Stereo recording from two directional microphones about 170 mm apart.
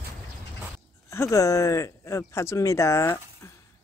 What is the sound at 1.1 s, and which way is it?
Speech, 20° left (ahead or behind).